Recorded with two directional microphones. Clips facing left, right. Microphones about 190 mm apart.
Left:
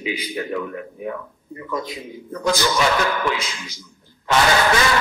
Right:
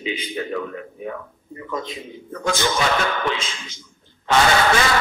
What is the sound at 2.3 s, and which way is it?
Speech, 35° left (ahead or behind).